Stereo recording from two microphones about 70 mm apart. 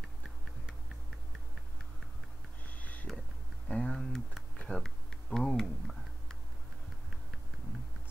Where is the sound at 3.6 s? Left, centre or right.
Centre.